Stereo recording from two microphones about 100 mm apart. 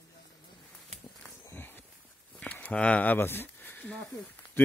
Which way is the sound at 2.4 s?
10° left (ahead or behind).